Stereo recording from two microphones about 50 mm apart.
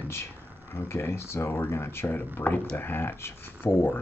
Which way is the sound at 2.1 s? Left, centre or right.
Left.